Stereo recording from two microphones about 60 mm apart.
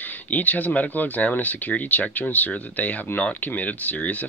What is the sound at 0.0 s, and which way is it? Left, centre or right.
Speech, left.